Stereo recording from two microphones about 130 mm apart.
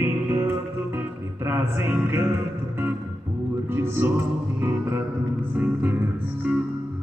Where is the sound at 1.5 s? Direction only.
15° right (ahead or behind).